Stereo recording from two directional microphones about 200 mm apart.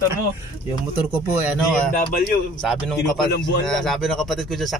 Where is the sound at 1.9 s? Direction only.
40° left (ahead or behind).